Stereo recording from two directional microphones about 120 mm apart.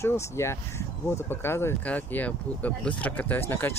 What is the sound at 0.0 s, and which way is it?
Speech, 20° left (ahead or behind).